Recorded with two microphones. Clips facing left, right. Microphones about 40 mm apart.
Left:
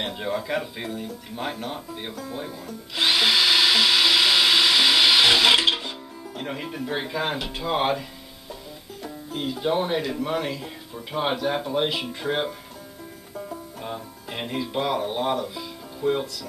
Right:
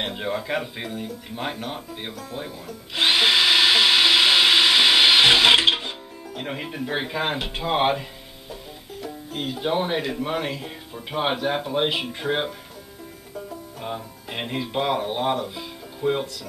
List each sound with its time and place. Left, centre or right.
0.0 s speech: centre
2.9 s drill: centre
9.0 s speech: centre
13.7 s speech: centre